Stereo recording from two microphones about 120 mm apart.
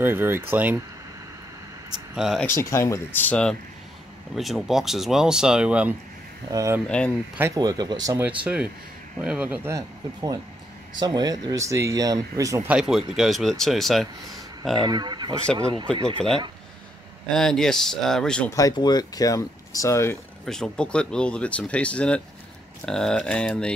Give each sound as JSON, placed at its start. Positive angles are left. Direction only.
{"t": 0.0, "sound": "speech", "side_deg": -20}
{"t": 2.1, "sound": "speech", "side_deg": -5}
{"t": 2.4, "sound": "speech", "side_deg": 25}
{"t": 4.4, "sound": "speech", "side_deg": 0}
{"t": 6.5, "sound": "speech", "side_deg": -25}
{"t": 8.5, "sound": "speech", "side_deg": -15}
{"t": 9.7, "sound": "speech", "side_deg": -30}
{"t": 12.6, "sound": "speech", "side_deg": -5}
{"t": 14.8, "sound": "speech", "side_deg": -35}
{"t": 17.3, "sound": "speech", "side_deg": 5}
{"t": 18.5, "sound": "speech", "side_deg": 30}
{"t": 20.4, "sound": "speech", "side_deg": 5}